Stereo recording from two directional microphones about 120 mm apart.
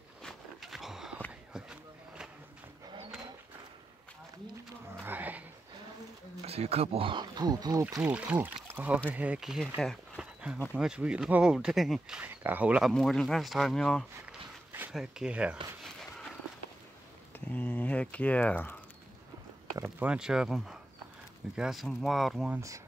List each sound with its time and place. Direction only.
0.2 s walk: centre (ahead or behind)
1.5 s a sound: 5° right (ahead or behind)
5.0 s a sound: 15° right (ahead or behind)
6.4 s speech: 60° right (ahead or behind); by 7.8 s 35° right (ahead or behind)
8.0 s speech: 10° right (ahead or behind)
10.1 s a sound: 10° right (ahead or behind)
10.7 s speech: 10° right (ahead or behind)
12.2 s speech: 10° right (ahead or behind)
12.9 s speech: 5° left (ahead or behind)
14.9 s speech: 5° right (ahead or behind)
15.8 s a sound: 5° left (ahead or behind)
17.5 s speech: 10° left (ahead or behind)
19.8 s speech: 10° right (ahead or behind)